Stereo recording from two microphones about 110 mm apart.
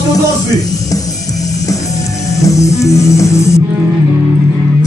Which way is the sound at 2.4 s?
30° left (ahead or behind).